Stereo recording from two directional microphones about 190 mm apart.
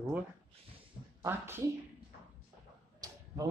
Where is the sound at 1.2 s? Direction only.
10° right (ahead or behind).